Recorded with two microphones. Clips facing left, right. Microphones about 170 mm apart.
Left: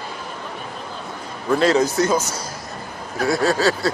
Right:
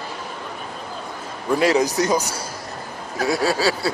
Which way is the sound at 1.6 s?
15° right (ahead or behind).